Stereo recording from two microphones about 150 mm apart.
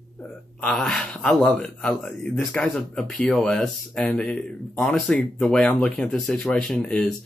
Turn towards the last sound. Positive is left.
turn(degrees=5)  # may be behind; listen again after turning